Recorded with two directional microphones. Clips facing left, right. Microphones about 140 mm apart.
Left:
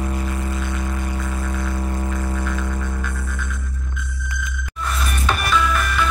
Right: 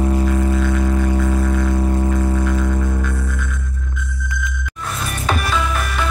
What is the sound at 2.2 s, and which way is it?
Music, 20° right (ahead or behind).